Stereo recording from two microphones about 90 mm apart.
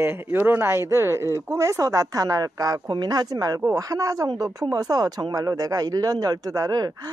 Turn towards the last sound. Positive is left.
turn(degrees=-45)  # may be behind; listen again after turning